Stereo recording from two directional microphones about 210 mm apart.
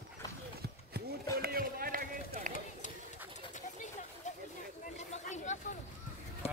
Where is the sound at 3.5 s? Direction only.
35° left (ahead or behind).